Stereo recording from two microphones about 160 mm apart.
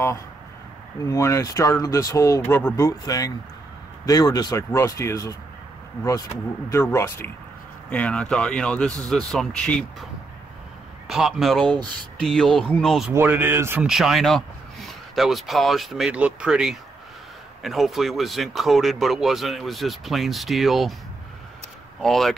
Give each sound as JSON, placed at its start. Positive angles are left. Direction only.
{"t": 1.0, "sound": "speech", "side_deg": 20}
{"t": 6.7, "sound": "speech", "side_deg": 15}
{"t": 11.1, "sound": "speech", "side_deg": 0}
{"t": 13.1, "sound": "speech", "side_deg": -15}
{"t": 13.8, "sound": "speech", "side_deg": 0}
{"t": 22.0, "sound": "speech", "side_deg": 0}